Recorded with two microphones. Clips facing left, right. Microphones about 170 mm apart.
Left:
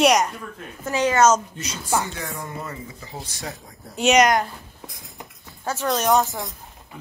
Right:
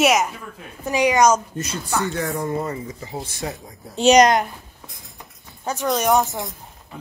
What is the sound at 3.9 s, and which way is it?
Speech, 35° right (ahead or behind).